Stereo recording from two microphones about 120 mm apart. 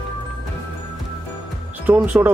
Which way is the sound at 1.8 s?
15° right (ahead or behind).